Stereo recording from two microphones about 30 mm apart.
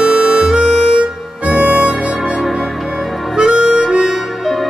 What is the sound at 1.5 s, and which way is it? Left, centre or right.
Harmonica, right.